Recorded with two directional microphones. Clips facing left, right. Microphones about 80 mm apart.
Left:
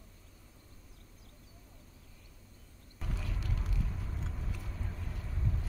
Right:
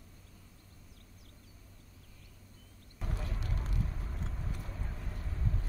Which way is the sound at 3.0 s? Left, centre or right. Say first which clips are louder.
Even; right.